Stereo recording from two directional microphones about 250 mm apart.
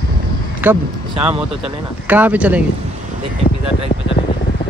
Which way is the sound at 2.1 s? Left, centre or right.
Centre.